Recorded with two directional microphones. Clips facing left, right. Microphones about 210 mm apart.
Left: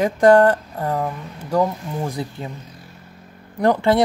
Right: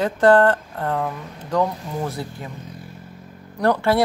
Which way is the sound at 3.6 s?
15° left (ahead or behind).